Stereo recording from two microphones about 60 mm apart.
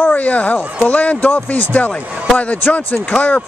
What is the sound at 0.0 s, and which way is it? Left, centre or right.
Speech, left.